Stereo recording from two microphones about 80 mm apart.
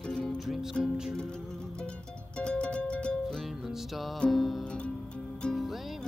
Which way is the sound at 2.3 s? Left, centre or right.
Centre.